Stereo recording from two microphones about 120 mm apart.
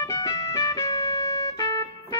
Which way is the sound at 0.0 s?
30° left (ahead or behind).